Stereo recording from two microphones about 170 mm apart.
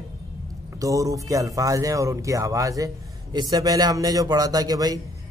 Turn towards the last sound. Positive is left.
turn(degrees=-20)  # may be behind; listen again after turning